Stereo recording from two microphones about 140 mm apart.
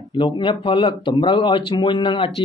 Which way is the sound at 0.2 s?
35° left (ahead or behind).